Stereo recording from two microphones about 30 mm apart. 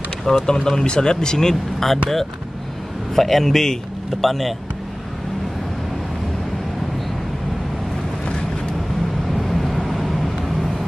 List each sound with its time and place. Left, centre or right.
0.5 s speech: left
1.9 s a man's voice: centre
9.3 s vehicle: centre